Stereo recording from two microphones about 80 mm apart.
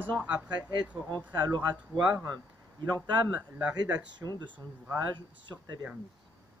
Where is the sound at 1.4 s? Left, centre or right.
Right.